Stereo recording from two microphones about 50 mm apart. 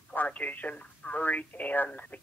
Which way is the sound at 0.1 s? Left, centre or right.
Left.